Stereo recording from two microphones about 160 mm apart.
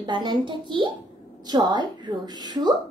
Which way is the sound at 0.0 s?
30° right (ahead or behind).